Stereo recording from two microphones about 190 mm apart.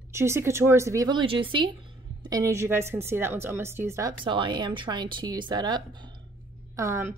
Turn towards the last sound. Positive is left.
turn(degrees=-15)  # may be behind; listen again after turning